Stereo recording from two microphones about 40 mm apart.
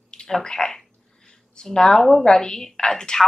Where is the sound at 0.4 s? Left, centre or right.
Centre.